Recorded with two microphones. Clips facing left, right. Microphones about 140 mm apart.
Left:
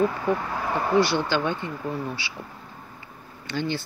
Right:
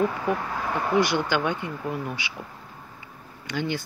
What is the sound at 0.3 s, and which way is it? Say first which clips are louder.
Speech: left 1 dB; 10° right (ahead or behind).